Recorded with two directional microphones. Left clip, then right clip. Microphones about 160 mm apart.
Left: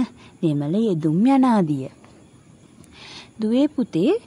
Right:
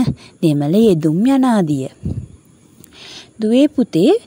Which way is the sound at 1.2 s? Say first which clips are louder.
Right 3 dB; 15° right (ahead or behind).